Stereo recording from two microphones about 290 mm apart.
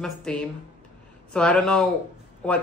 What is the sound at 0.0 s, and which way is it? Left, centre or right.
Speech, centre.